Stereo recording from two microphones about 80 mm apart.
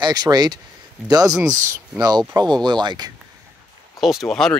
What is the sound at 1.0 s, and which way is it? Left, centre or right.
Speech, right.